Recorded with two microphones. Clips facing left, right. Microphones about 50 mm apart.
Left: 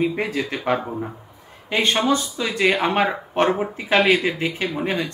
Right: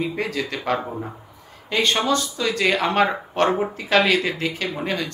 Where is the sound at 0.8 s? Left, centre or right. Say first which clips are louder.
Left 2 dB; centre.